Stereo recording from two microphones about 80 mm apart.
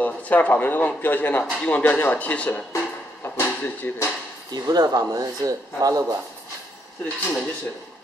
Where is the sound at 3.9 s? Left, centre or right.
Left.